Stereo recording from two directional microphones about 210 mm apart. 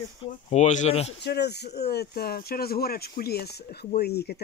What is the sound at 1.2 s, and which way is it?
Speech, 50° left (ahead or behind).